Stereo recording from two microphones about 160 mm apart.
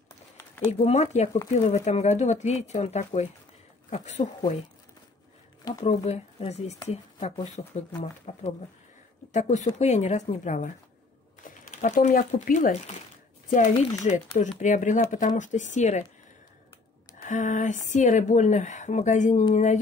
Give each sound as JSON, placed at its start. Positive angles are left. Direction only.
{"t": 0.7, "sound": "speech", "side_deg": 40}
{"t": 5.9, "sound": "speech", "side_deg": 40}
{"t": 17.2, "sound": "speech", "side_deg": 50}